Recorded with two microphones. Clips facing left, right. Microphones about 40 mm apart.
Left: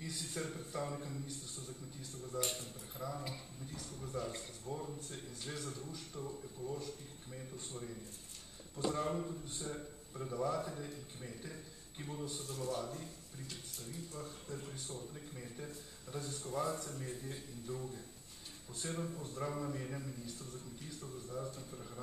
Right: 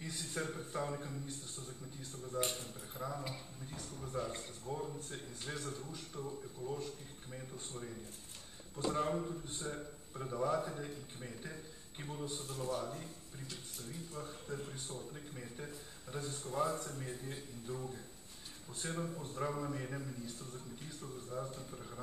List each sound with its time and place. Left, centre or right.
0.2 s a man's voice: centre
2.4 s a man's voice: right
3.0 s a man's voice: right
8.9 s a man's voice: centre